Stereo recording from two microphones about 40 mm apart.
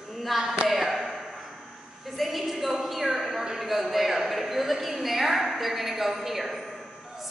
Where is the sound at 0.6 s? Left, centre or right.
Centre.